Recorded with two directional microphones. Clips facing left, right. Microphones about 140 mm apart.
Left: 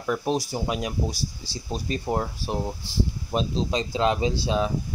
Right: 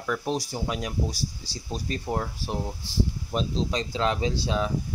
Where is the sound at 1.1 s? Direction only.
15° right (ahead or behind).